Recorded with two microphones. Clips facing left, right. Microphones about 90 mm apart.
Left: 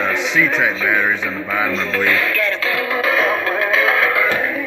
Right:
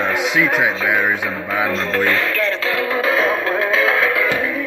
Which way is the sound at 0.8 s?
10° right (ahead or behind).